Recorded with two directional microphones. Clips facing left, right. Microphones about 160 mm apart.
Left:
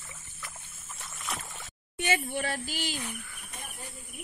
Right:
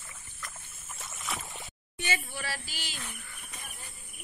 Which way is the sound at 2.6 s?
50° left (ahead or behind).